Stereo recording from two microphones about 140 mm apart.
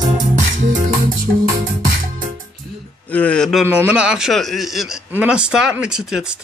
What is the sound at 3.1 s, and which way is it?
Speech, 10° left (ahead or behind).